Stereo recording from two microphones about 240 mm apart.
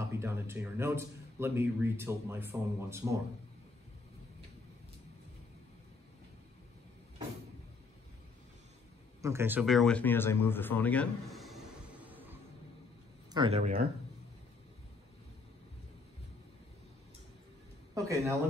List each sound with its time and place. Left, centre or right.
0.0 s a man's voice: centre
9.2 s speech: centre
13.3 s speech: right
17.9 s a man's voice: centre